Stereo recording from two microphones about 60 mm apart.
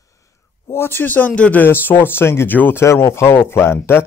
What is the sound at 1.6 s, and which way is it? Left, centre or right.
Speech, left.